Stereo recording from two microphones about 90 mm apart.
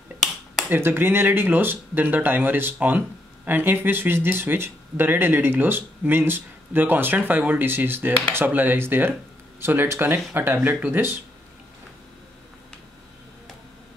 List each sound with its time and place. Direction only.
0.7 s speech: 25° right (ahead or behind)